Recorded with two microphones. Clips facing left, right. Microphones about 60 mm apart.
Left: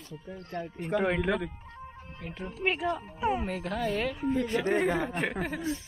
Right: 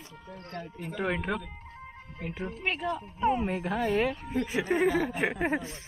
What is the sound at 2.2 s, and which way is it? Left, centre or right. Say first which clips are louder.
A woman's voice: even; centre.